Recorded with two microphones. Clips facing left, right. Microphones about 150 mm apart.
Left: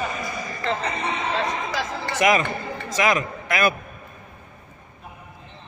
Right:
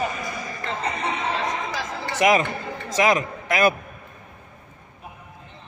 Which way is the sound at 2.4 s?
35° right (ahead or behind).